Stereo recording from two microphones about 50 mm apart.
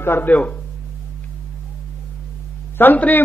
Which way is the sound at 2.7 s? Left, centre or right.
Left.